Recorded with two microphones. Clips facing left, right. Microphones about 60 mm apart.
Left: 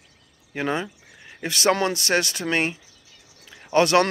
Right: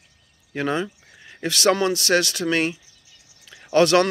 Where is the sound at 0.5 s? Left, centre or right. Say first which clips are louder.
Right 2 dB; centre.